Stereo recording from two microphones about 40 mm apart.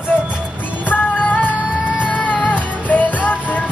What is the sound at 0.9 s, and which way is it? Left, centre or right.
Music, left.